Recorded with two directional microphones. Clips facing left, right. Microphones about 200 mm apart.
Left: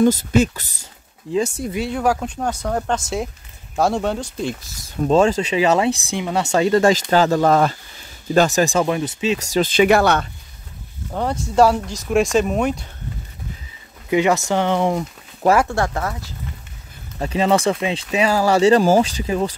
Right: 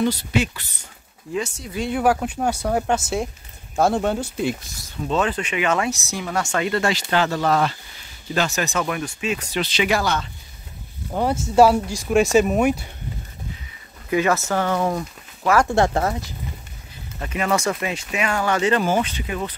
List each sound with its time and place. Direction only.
0.0 s speech: 45° left (ahead or behind)
1.3 s speech: 30° left (ahead or behind)
1.8 s speech: centre (ahead or behind)
5.1 s speech: 30° left (ahead or behind)
6.1 s speech: 20° left (ahead or behind)
6.5 s speech: 35° left (ahead or behind)
8.6 s speech: 30° left (ahead or behind)
9.5 s speech: 50° left (ahead or behind)
11.1 s speech: 5° right (ahead or behind)
14.1 s speech: 15° left (ahead or behind)
15.7 s speech: 25° right (ahead or behind)
17.2 s speech: 30° left (ahead or behind)